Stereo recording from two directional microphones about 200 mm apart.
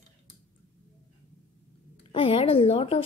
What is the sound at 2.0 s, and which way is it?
Speech, 25° left (ahead or behind).